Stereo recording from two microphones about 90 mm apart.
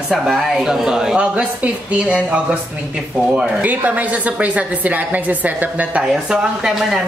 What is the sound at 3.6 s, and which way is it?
A woman's voice, 15° right (ahead or behind).